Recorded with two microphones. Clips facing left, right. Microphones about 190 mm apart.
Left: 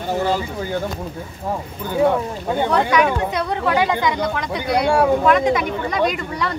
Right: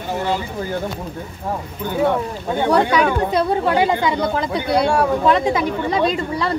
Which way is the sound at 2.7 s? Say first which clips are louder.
Right 2 dB; 30° right (ahead or behind).